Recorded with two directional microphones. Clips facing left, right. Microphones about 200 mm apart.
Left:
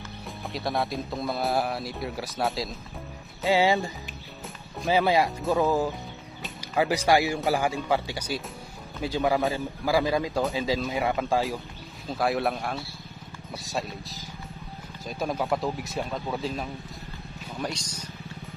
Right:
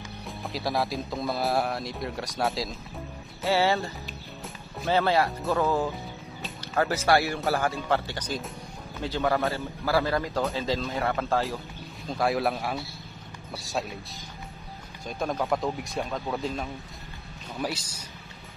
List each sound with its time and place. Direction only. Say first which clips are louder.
0.5 s speech: even; centre (ahead or behind)
3.4 s speech: left 2 dB; 15° left (ahead or behind)
12.1 s speech: even; centre (ahead or behind)
15.0 s speech: even; 5° left (ahead or behind)